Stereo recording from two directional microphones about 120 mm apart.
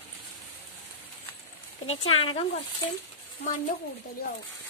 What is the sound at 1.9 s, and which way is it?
Speech, 50° left (ahead or behind).